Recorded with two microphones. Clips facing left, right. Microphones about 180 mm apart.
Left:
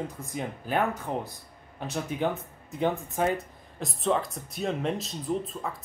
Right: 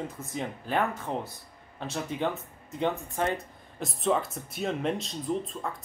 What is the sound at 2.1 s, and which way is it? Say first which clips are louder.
Speech: left 3 dB; centre (ahead or behind).